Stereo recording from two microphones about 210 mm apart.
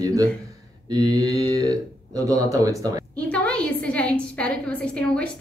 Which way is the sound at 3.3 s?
5° left (ahead or behind).